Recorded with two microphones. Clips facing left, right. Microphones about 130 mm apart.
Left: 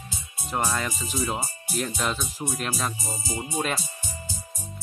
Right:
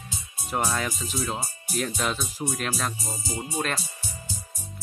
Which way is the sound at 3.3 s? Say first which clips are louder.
Left 1 dB; 10° left (ahead or behind).